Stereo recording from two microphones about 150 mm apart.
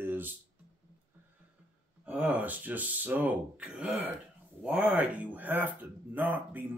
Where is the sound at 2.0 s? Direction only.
10° right (ahead or behind).